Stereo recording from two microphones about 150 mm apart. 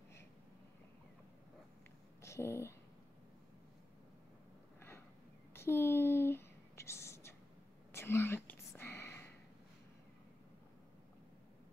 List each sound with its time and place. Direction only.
2.2 s speech: 20° left (ahead or behind)
5.5 s whispering: 15° left (ahead or behind)